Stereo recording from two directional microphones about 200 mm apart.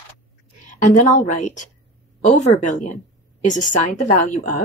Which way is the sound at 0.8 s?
40° left (ahead or behind).